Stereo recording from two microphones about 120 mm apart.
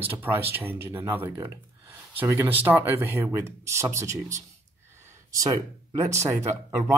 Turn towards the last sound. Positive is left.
turn(degrees=-25)  # may be behind; listen again after turning